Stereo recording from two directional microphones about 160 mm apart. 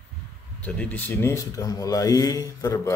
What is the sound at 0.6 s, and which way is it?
Speech, 10° left (ahead or behind).